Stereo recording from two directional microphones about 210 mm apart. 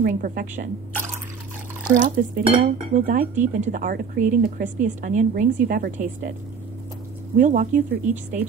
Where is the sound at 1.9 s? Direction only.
40° right (ahead or behind).